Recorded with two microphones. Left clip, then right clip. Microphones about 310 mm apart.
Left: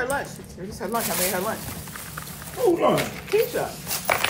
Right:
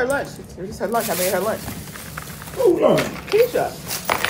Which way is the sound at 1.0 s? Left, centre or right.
Centre.